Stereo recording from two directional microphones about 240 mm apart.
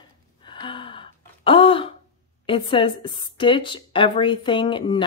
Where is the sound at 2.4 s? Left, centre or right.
Left.